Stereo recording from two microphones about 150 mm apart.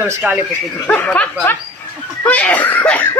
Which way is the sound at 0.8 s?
10° left (ahead or behind).